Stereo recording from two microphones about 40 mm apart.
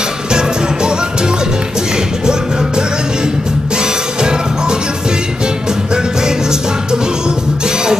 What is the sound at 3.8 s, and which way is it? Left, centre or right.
Music, right.